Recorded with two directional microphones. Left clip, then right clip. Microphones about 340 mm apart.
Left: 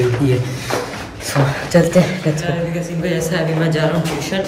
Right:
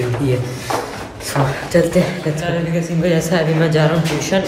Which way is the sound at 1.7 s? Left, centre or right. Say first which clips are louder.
Left 1 dB; centre.